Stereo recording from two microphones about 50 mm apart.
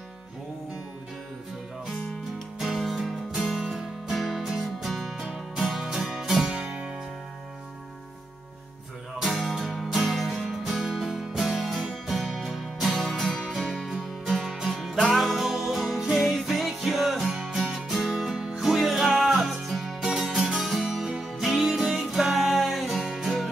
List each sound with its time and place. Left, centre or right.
2.0 s music: centre
6.5 s music: centre
9.2 s music: centre